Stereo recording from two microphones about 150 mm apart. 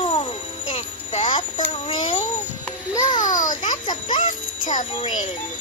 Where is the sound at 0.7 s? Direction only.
35° left (ahead or behind).